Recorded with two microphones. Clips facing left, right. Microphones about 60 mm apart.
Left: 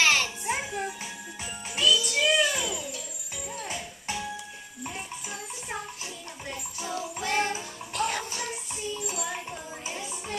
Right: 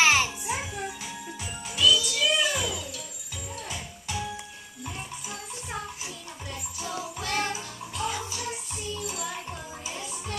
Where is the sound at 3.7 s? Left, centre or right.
Left.